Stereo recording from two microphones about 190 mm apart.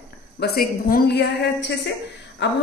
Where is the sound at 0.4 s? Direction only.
50° left (ahead or behind).